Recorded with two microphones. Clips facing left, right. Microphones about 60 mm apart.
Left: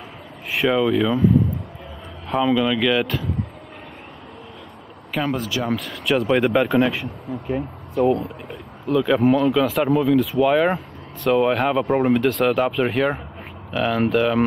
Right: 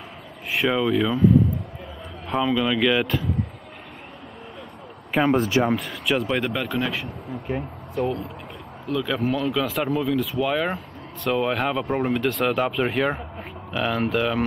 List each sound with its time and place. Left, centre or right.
0.5 s speech: centre
5.1 s speech: centre
5.4 s speech: right
5.7 s speech: centre
7.3 s speech: centre
8.8 s speech: centre